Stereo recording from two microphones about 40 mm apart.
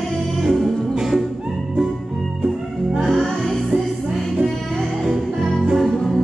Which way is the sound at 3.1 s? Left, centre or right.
Centre.